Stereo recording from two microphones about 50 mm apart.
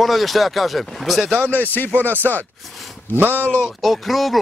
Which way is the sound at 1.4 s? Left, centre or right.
Left.